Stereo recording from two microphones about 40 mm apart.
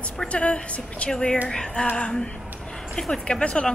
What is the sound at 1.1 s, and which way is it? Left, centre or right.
Speech, centre.